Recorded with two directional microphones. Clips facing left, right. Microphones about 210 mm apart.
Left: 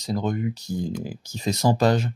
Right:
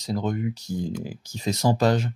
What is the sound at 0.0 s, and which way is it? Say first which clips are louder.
Speech: left 1 dB; 40° left (ahead or behind).